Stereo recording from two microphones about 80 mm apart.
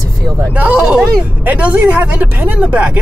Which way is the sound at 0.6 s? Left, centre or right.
Centre.